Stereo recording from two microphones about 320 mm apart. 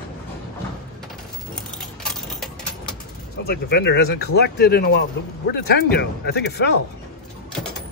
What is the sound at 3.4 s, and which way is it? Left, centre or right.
Speech, left.